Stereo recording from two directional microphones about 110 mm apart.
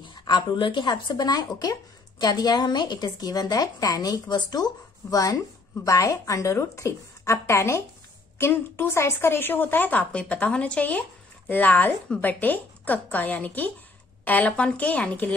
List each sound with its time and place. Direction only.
0.0 s a woman's voice: 45° left (ahead or behind); by 15.3 s 15° left (ahead or behind)